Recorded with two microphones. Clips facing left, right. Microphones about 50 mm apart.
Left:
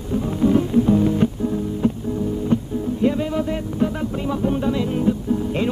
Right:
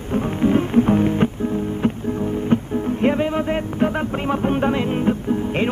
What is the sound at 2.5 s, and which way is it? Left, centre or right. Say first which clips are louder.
Music: right 2 dB; right.